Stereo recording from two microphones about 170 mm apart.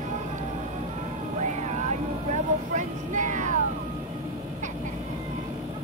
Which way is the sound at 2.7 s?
45° right (ahead or behind).